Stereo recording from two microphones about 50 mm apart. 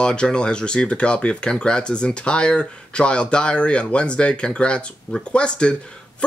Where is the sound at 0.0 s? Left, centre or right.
Centre.